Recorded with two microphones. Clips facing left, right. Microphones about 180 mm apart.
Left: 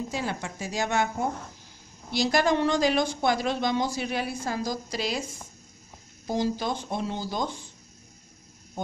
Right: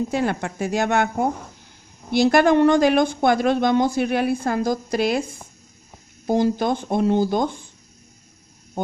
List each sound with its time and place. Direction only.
0.1 s a woman's voice: 60° right (ahead or behind)